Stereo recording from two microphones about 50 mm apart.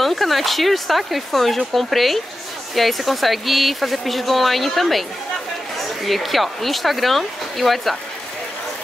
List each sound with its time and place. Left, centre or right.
0.0 s speech: centre
6.0 s speech: centre